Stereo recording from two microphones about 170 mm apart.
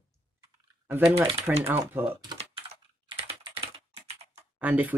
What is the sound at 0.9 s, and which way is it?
Speech, 10° right (ahead or behind).